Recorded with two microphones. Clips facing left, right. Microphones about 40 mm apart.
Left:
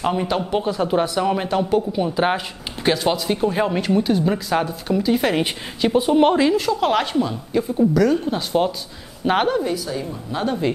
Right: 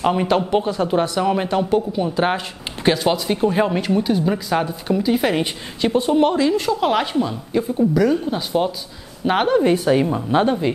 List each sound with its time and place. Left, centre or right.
0.0 s speech: centre
5.9 s speech: centre
6.2 s speech: left
6.6 s a woman's voice: centre
9.6 s a woman's voice: right